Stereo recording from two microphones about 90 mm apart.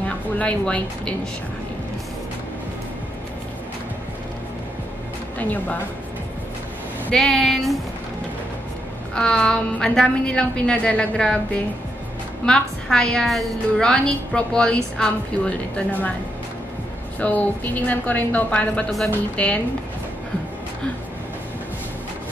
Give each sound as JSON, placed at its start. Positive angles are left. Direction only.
{"t": 0.4, "sound": "a woman's voice", "side_deg": 15}
{"t": 5.4, "sound": "a woman's voice", "side_deg": 20}
{"t": 7.1, "sound": "speech", "side_deg": 5}
{"t": 9.1, "sound": "a woman's voice", "side_deg": 10}
{"t": 17.2, "sound": "a woman's voice", "side_deg": 20}